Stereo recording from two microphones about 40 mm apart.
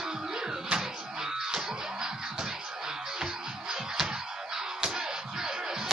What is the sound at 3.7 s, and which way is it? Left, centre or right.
Music, centre.